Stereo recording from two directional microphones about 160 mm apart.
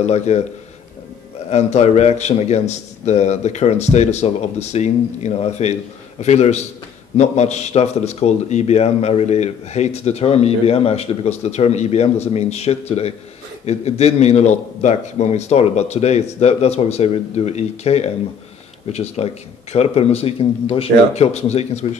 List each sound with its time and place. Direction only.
0.0 s a man's voice: 45° left (ahead or behind)
1.5 s a man's voice: 45° left (ahead or behind)